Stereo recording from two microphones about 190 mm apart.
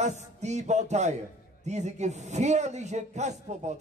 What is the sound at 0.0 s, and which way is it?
A man's voice, 35° right (ahead or behind).